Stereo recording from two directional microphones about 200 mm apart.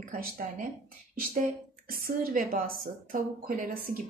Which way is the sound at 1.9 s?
45° right (ahead or behind).